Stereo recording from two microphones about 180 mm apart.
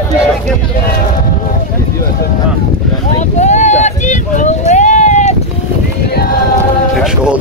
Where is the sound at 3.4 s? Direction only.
40° left (ahead or behind).